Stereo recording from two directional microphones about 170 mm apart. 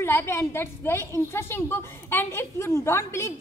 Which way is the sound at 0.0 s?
15° left (ahead or behind).